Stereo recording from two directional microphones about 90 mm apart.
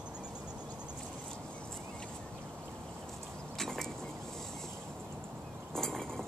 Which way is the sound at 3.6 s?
5° left (ahead or behind).